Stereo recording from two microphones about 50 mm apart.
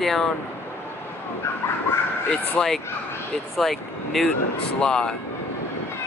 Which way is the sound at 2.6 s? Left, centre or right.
Centre.